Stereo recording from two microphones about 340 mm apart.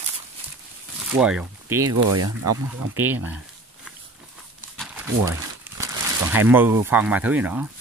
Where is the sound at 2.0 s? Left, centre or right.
Right.